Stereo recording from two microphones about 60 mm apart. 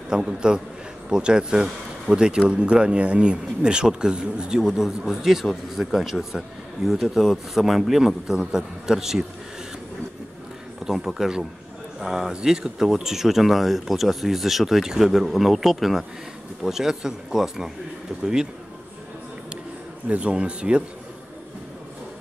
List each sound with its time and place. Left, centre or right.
0.1 s speech: centre
10.8 s speech: centre
20.1 s speech: centre